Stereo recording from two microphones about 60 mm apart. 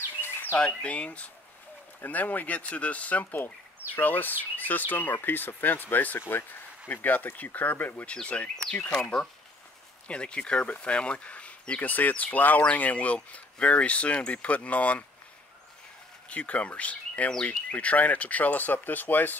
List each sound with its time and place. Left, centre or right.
0.2 s bird: left
0.6 s speech: left
16.3 s speech: left